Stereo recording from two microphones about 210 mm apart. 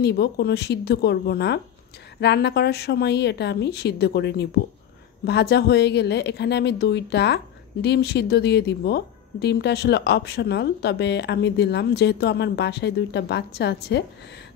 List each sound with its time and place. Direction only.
0.0 s a woman's voice: 50° left (ahead or behind)